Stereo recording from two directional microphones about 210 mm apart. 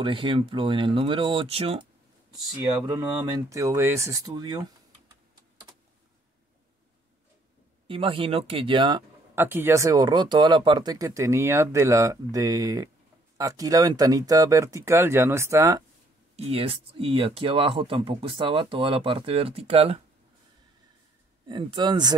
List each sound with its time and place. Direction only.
0.0 s speech: 25° right (ahead or behind)
2.7 s speech: 15° right (ahead or behind)
7.9 s speech: 25° right (ahead or behind)
9.3 s speech: 10° right (ahead or behind)
16.3 s speech: 30° right (ahead or behind)
21.5 s speech: 20° right (ahead or behind)